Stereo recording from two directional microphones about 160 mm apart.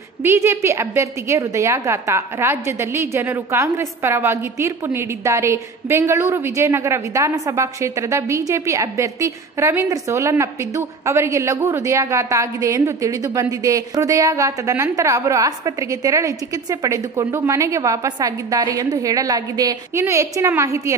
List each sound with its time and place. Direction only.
0.2 s a woman's voice: 15° right (ahead or behind)